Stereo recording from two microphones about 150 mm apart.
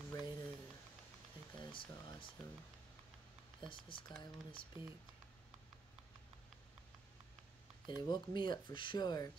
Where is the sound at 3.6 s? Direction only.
35° left (ahead or behind).